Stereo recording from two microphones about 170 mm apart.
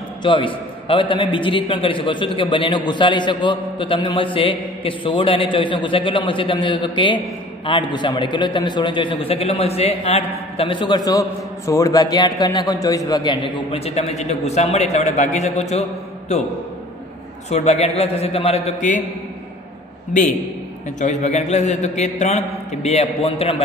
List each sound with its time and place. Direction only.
0.2 s a man's voice: 30° left (ahead or behind)
17.5 s a man's voice: 40° left (ahead or behind)
21.0 s a man's voice: 45° left (ahead or behind)